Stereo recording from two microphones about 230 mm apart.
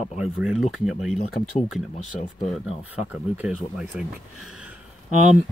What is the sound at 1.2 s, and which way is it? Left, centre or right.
Speech, left.